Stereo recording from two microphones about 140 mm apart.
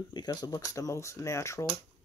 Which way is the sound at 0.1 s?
30° left (ahead or behind).